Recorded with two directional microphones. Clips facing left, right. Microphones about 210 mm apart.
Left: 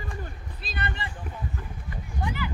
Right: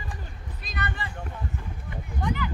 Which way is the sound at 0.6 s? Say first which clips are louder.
Even; 30° left (ahead or behind).